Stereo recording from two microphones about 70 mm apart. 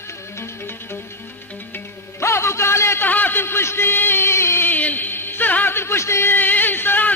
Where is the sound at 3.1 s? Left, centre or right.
Left.